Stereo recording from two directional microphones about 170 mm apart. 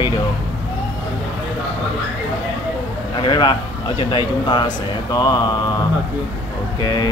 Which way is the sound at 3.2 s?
25° left (ahead or behind).